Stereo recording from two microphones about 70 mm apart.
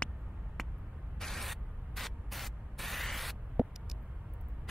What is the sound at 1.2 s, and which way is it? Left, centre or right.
Spray, centre.